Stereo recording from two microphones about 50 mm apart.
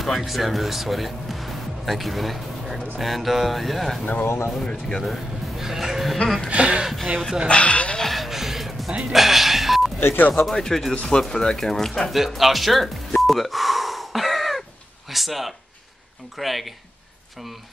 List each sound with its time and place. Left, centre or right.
0.0 s speech: centre
4.0 s speech: left
4.6 s speech: centre
5.6 s speech: centre
6.2 s speech: centre
6.5 s speech: right
7.4 s speech: left
8.0 s music: centre
9.1 s a sound: centre
9.9 s speech: left
10.5 s speech: centre
12.1 s music: centre
15.0 s speech: centre